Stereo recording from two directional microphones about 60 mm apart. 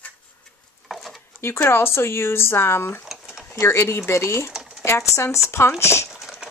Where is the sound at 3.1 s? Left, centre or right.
Centre.